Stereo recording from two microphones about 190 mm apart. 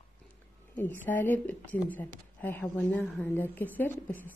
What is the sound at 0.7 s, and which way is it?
A woman's voice, 10° left (ahead or behind).